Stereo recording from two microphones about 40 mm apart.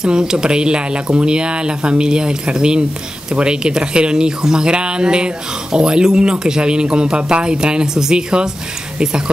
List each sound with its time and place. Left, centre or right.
0.0 s speech: centre